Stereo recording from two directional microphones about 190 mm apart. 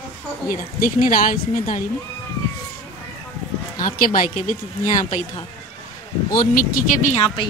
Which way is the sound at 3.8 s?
45° left (ahead or behind).